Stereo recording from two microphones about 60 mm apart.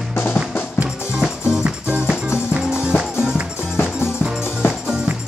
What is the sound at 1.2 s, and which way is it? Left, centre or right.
Music, centre.